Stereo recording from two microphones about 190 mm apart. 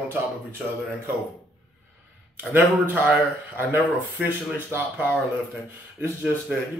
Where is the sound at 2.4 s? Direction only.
10° right (ahead or behind).